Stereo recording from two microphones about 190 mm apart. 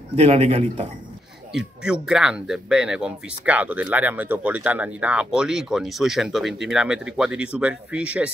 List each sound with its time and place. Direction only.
0.1 s speech: 30° right (ahead or behind)
1.5 s speech: 5° right (ahead or behind)